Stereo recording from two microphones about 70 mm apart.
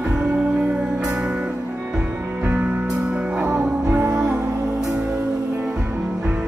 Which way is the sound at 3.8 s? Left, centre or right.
Right.